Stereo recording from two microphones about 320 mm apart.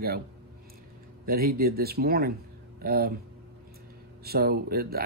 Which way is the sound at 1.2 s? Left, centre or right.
Right.